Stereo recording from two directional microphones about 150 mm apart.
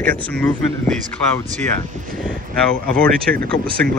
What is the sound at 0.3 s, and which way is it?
Speech, 5° left (ahead or behind).